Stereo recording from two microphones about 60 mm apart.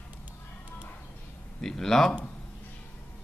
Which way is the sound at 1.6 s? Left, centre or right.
Centre.